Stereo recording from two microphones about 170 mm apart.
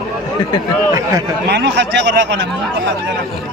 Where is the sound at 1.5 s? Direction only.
90° right.